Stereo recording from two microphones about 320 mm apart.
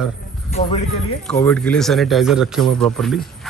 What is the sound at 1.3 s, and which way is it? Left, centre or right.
A man's voice, centre.